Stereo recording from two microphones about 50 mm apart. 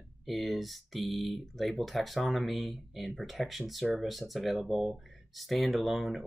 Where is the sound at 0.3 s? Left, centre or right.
Centre.